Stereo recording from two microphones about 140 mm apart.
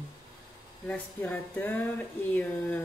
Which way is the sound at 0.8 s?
10° left (ahead or behind).